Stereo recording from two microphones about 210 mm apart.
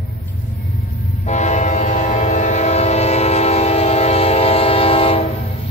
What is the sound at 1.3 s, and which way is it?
Train, 35° left (ahead or behind).